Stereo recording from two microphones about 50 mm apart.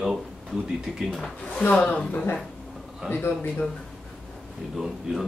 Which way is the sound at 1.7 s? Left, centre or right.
Left.